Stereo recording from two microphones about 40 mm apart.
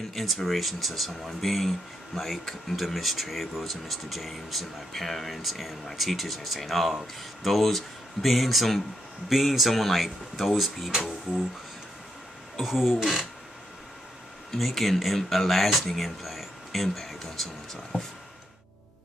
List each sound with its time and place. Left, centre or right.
0.1 s speech: centre
12.5 s speech: centre
14.5 s speech: centre